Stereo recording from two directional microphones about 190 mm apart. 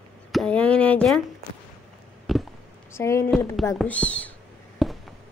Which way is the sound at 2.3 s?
Centre (ahead or behind).